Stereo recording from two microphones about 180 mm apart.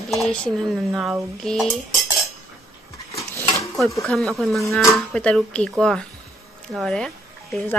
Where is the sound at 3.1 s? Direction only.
15° left (ahead or behind).